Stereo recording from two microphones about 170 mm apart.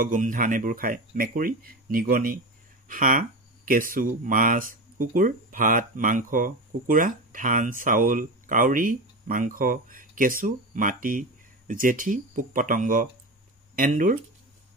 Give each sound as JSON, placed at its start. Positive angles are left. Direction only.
{"t": 0.0, "sound": "speech", "side_deg": -50}